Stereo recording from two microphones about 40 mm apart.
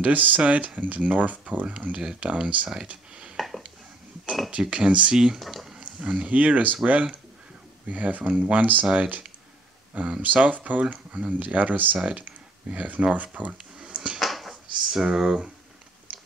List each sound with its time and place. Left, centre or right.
0.0 s speech: right
3.3 s a sound: centre
4.5 s speech: right
5.1 s speech: centre
5.5 s a sound: centre
5.9 s speech: right
6.2 s speech: right
10.2 s speech: right
12.0 s speech: right
13.7 s finger snapping: right
14.2 s a sound: centre
14.5 s drawer open or close: centre
15.1 s speech: centre